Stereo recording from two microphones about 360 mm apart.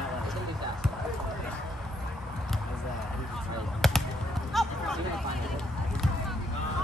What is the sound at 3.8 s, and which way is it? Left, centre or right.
Basketball bounce, centre.